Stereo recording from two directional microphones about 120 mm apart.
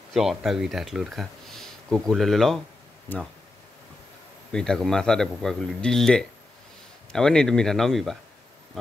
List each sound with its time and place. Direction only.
0.1 s speech: 5° right (ahead or behind)
4.5 s speech: 5° left (ahead or behind)